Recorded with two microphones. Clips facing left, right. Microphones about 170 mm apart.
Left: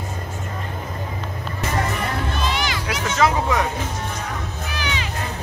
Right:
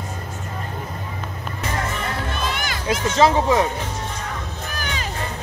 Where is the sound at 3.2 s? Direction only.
30° right (ahead or behind).